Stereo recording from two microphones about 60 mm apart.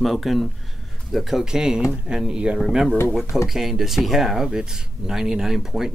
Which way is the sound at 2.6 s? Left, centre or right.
Centre.